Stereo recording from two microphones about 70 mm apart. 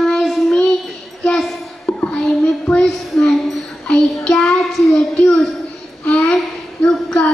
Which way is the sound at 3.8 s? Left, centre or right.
Centre.